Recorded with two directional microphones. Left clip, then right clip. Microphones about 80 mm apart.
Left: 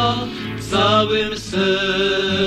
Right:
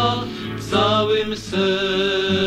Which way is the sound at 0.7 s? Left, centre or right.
Left.